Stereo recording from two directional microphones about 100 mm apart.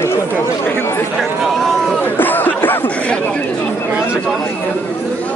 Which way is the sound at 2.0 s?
20° left (ahead or behind).